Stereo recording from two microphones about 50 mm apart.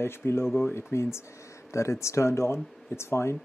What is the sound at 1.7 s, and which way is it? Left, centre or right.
Speech, left.